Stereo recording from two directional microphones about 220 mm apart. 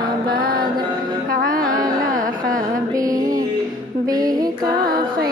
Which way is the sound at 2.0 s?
40° right (ahead or behind).